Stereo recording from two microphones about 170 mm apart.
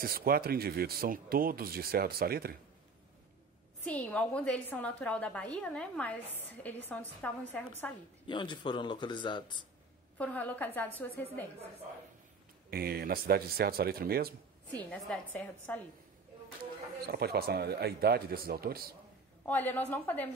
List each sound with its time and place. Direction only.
0.0 s speech: 60° right (ahead or behind)
3.8 s a woman's voice: 10° left (ahead or behind)
8.3 s a man's voice: 25° left (ahead or behind)
10.1 s a woman's voice: 10° left (ahead or behind)
12.6 s speech: 60° right (ahead or behind)
14.7 s a woman's voice: 10° left (ahead or behind)
17.0 s speech: 65° right (ahead or behind)
19.4 s a woman's voice: 10° left (ahead or behind)